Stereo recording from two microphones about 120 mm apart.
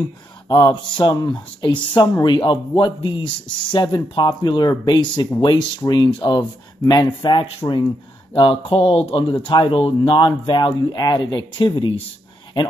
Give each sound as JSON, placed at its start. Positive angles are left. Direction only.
{"t": 0.5, "sound": "speech", "side_deg": 35}